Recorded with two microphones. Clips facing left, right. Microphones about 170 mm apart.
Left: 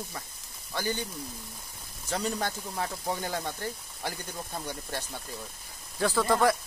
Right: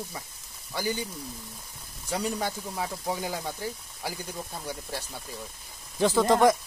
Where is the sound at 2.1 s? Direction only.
10° right (ahead or behind).